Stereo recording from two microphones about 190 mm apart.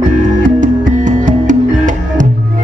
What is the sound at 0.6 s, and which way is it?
Music, 40° right (ahead or behind).